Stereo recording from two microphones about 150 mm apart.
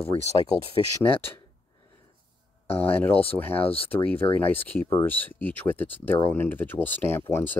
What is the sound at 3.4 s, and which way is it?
Speech, 15° left (ahead or behind).